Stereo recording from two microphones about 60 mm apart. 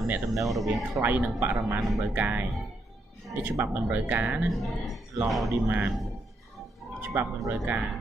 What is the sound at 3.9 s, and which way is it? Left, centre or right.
Speech, right.